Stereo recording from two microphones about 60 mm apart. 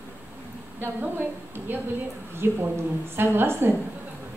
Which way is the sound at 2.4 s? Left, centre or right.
Right.